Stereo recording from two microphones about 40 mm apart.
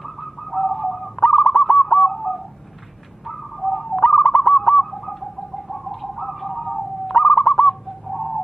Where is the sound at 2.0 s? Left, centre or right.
Centre.